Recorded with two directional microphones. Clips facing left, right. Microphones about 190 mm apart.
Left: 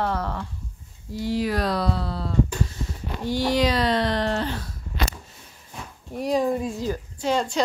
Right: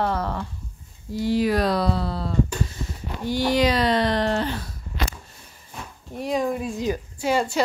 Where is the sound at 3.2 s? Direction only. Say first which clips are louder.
Right 1 dB; centre (ahead or behind).